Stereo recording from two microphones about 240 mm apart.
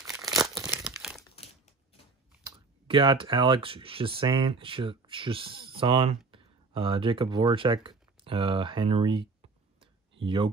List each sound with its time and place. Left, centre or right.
0.0 s tearing: centre
2.4 s speech: centre